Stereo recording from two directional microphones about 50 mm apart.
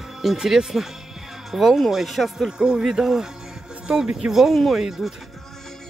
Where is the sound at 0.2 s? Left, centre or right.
Centre.